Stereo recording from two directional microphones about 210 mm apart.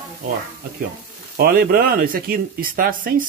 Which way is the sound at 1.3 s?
45° right (ahead or behind).